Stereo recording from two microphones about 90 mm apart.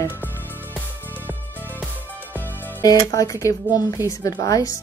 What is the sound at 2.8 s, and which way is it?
Speech, 40° left (ahead or behind).